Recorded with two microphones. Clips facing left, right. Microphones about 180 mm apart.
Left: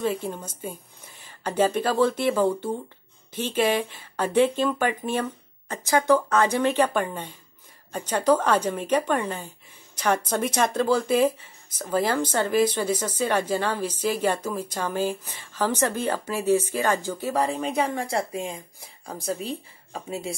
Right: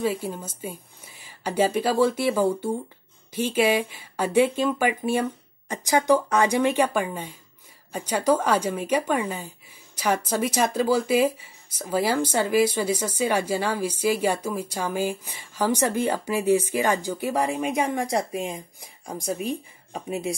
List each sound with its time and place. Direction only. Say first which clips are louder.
0.0 s speech: right 1 dB; 5° right (ahead or behind)